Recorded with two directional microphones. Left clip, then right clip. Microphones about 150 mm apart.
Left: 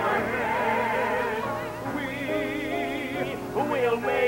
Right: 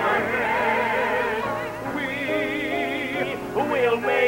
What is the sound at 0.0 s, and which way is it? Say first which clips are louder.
Music: right 3 dB; 35° left (ahead or behind).